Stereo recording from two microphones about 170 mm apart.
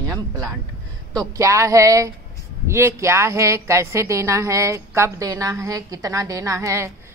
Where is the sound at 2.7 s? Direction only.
15° right (ahead or behind).